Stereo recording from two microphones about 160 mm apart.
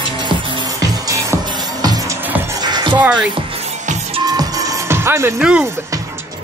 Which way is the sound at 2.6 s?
25° right (ahead or behind).